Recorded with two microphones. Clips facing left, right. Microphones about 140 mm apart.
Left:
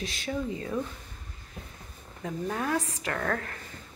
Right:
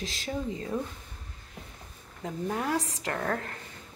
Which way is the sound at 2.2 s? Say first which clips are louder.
Even; 20° right (ahead or behind).